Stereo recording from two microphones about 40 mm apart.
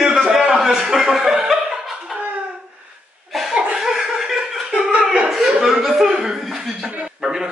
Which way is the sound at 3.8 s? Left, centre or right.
Centre.